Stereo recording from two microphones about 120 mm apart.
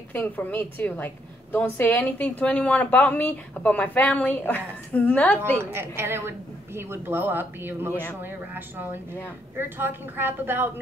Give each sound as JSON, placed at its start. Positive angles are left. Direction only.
{"t": 0.1, "sound": "a woman's voice", "side_deg": 15}
{"t": 5.6, "sound": "a woman's voice", "side_deg": -20}